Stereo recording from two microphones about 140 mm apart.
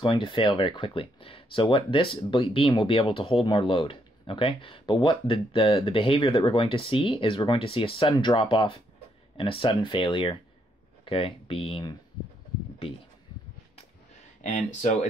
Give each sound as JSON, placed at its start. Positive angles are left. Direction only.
{"t": 0.0, "sound": "speech", "side_deg": 35}
{"t": 14.4, "sound": "speech", "side_deg": 55}